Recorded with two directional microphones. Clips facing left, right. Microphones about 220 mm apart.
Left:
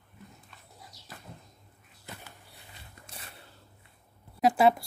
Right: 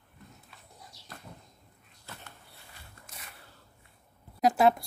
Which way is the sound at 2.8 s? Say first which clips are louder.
Left 3 dB; 30° left (ahead or behind).